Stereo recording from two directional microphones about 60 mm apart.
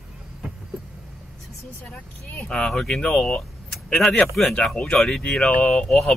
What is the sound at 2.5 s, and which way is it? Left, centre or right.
Speech, centre.